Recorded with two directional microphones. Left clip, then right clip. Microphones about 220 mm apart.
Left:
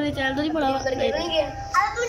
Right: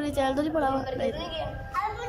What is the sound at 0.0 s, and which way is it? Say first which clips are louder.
A woman's voice: left 2 dB; 10° right (ahead or behind).